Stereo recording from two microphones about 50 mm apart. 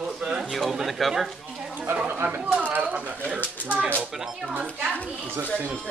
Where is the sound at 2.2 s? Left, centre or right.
Right.